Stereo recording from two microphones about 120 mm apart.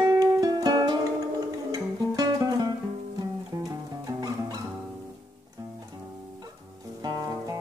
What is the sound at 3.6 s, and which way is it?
Music, 30° right (ahead or behind).